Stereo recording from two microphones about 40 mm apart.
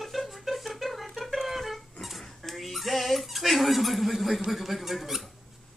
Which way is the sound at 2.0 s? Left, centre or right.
Centre.